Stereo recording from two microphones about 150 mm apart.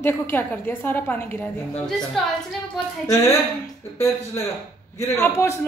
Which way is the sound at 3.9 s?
20° left (ahead or behind).